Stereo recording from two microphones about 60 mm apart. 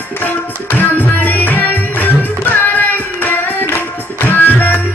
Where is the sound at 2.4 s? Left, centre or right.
Left.